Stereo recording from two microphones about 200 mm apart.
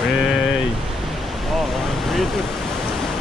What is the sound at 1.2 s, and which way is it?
Waves, centre (ahead or behind).